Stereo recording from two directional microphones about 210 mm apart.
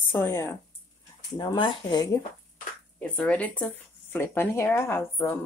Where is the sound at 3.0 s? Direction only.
5° left (ahead or behind).